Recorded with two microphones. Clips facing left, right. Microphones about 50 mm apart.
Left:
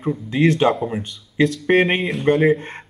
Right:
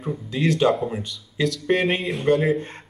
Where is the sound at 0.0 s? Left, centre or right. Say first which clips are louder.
Left 6 dB; left.